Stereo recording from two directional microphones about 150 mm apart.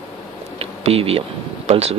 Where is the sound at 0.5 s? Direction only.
40° right (ahead or behind).